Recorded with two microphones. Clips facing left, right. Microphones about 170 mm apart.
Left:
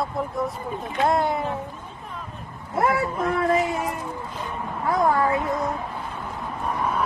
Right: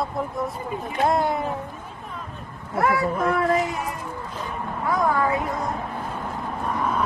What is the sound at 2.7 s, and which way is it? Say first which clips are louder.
Speech: even; 30° left (ahead or behind).